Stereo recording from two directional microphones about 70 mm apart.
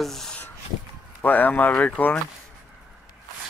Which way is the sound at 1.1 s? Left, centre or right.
Left.